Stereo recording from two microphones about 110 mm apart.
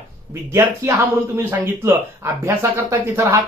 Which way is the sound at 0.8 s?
20° right (ahead or behind).